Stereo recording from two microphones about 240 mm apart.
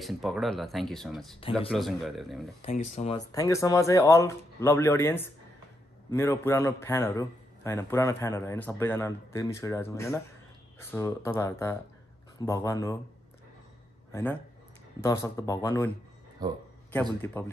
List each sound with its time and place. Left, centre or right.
0.0 s speech: centre
2.6 s speech: left
3.2 s a man's voice: centre
15.0 s a man's voice: centre
16.4 s a man's voice: centre
17.2 s a man's voice: centre